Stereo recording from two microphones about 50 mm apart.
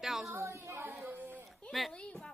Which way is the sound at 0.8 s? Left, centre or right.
Right.